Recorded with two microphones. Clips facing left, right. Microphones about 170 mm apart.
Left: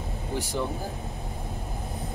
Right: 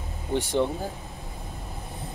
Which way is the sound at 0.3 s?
25° right (ahead or behind).